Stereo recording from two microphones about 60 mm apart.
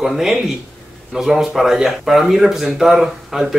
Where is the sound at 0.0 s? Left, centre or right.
Centre.